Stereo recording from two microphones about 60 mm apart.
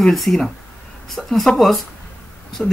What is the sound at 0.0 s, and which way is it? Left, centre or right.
Speech, centre.